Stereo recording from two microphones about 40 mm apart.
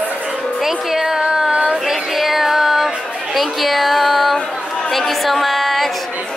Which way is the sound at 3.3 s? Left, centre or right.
Centre.